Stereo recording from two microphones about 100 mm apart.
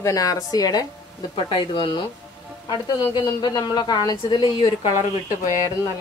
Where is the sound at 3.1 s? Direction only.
40° left (ahead or behind).